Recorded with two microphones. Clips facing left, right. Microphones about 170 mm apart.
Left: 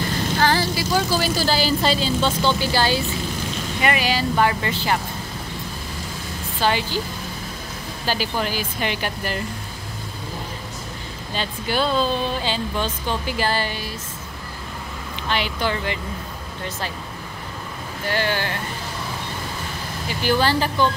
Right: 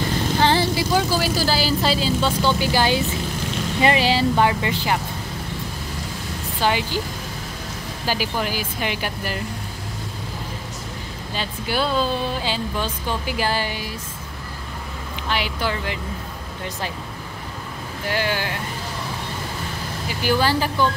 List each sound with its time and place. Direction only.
0.4 s vehicle: 25° right (ahead or behind)
1.1 s speech: 10° right (ahead or behind)
3.8 s speech: 30° right (ahead or behind); by 5.0 s 15° right (ahead or behind)
6.6 s speech: 15° right (ahead or behind)
8.1 s speech: 10° right (ahead or behind)
11.3 s speech: 10° right (ahead or behind)
15.2 s speech: 5° right (ahead or behind)
18.0 s speech: 10° right (ahead or behind)
20.2 s speech: 10° right (ahead or behind)